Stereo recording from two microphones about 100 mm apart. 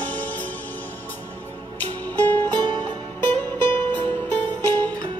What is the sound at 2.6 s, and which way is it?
Music, 55° right (ahead or behind).